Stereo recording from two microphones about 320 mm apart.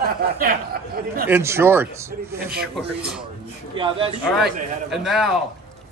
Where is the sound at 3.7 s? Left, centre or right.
Centre.